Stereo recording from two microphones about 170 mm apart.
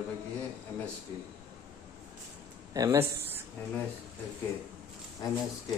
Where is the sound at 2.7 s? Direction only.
20° right (ahead or behind).